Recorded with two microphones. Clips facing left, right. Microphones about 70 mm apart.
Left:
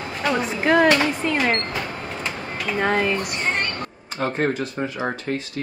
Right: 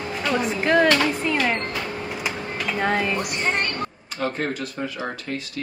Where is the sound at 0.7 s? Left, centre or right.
Centre.